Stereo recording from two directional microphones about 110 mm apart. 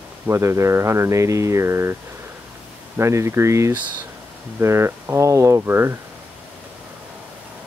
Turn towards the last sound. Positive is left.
turn(degrees=-25)  # may be behind; listen again after turning